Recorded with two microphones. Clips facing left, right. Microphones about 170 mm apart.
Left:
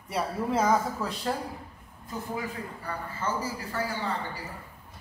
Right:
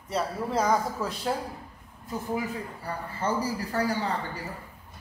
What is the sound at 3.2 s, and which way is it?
A man's voice, 40° right (ahead or behind).